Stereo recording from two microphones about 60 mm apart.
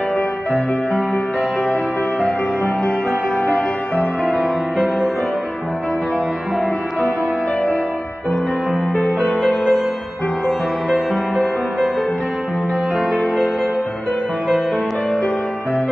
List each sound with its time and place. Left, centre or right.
2.1 s music: left
4.3 s music: centre
9.2 s music: left
9.5 s music: centre